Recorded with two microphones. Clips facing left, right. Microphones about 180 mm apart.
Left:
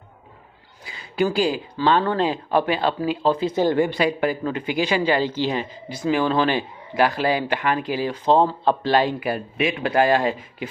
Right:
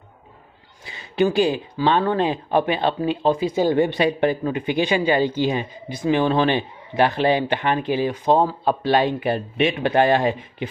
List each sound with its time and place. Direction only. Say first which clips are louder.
0.8 s speech: right 2 dB; 25° right (ahead or behind)